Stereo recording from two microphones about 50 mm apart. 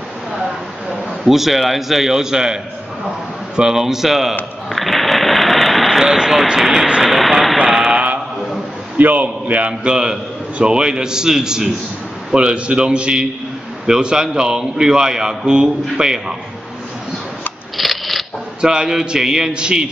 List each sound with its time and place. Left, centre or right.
0.8 s a man's voice: centre
4.6 s a sound: centre
7.0 s speech: centre
7.6 s mantra: centre
8.9 s a man's voice: right; by 16.3 s centre
17.7 s scissors: centre
18.6 s a man's voice: centre